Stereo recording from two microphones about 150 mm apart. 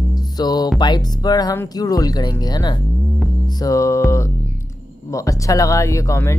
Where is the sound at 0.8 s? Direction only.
30° left (ahead or behind).